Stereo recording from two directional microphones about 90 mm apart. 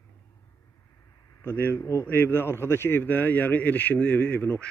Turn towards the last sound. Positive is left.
turn(degrees=20)  # may be behind; listen again after turning